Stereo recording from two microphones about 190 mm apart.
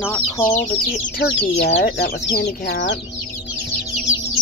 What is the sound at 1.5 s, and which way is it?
Speech, 60° left (ahead or behind).